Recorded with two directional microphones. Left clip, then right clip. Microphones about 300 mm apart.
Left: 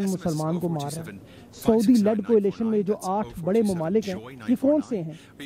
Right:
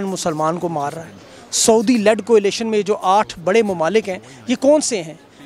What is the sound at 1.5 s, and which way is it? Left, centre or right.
A man's voice, centre.